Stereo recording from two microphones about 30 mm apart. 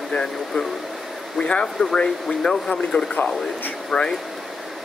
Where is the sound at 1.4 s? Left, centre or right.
Left.